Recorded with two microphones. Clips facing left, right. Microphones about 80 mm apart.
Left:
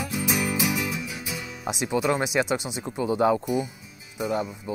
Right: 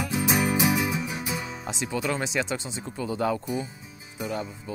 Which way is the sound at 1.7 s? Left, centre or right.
Centre.